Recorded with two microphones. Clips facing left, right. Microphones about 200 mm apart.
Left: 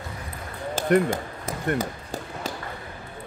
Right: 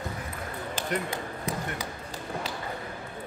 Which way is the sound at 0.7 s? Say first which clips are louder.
Left 11 dB; 50° left (ahead or behind).